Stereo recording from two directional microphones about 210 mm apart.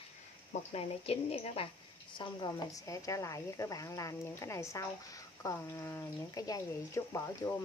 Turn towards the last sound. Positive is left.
turn(degrees=15)  # may be behind; listen again after turning